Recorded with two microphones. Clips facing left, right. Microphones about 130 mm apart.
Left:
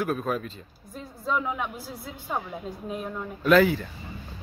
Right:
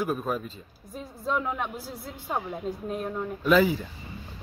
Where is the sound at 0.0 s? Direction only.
5° right (ahead or behind).